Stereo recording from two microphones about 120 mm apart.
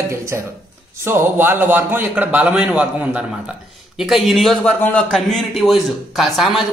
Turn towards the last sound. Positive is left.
turn(degrees=0)  # may be behind; listen again after turning